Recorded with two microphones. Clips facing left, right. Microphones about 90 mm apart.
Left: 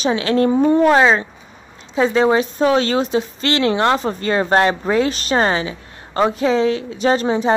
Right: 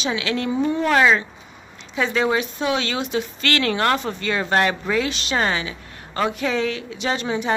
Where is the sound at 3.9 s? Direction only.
35° left (ahead or behind).